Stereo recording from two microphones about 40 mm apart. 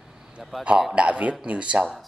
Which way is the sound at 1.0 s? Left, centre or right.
Right.